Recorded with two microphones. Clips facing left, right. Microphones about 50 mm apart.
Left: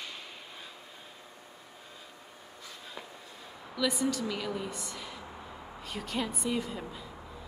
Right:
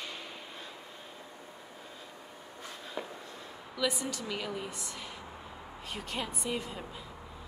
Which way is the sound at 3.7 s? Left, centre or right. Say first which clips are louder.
Left 3 dB; centre.